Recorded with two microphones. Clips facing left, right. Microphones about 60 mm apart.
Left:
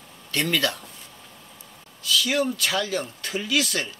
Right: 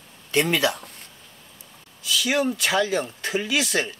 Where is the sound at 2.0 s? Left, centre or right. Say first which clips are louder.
Right 1 dB; centre.